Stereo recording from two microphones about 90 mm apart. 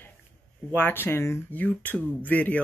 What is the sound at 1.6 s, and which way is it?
Speech, 15° left (ahead or behind).